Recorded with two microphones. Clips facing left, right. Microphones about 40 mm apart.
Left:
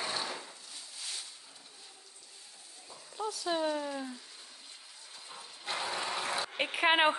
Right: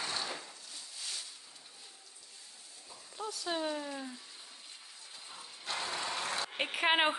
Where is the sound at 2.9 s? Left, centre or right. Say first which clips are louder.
Left 4 dB; centre.